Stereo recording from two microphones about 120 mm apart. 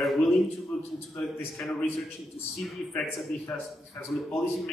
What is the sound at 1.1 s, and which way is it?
Speech, centre (ahead or behind).